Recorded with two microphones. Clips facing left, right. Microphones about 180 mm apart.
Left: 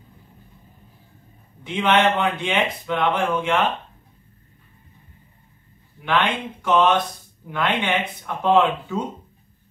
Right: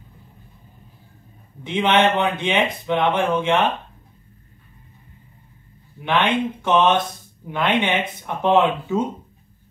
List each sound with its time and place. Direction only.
1.6 s speech: 20° right (ahead or behind)
6.0 s speech: 20° right (ahead or behind)